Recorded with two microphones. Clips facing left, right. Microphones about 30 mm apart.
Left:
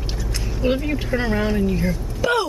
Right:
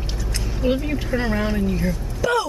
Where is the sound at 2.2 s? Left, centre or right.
Left.